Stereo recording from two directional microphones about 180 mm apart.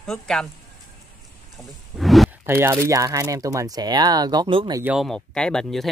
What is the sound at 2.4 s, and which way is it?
Speech, 15° right (ahead or behind).